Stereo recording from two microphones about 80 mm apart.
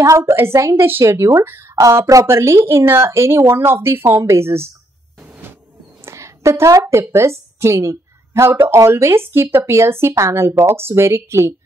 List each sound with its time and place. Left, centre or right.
0.0 s a woman's voice: right
6.0 s a woman's voice: right